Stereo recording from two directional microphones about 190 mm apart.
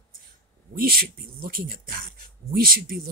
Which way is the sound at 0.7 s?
50° right (ahead or behind).